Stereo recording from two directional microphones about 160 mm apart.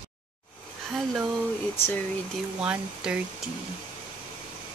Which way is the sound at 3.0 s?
5° right (ahead or behind).